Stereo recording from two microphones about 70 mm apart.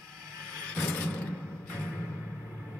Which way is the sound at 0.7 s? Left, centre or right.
Centre.